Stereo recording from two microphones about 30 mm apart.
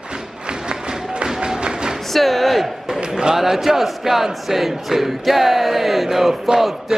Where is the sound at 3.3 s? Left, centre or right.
Centre.